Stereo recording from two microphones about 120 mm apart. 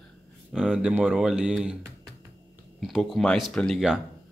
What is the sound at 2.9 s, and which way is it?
Speech, centre (ahead or behind).